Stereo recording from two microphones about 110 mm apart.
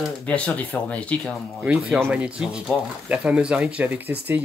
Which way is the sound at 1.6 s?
15° right (ahead or behind).